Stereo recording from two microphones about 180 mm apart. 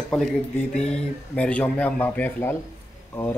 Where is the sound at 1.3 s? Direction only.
5° left (ahead or behind).